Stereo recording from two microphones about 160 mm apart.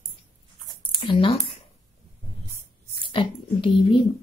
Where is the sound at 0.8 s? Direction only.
30° left (ahead or behind).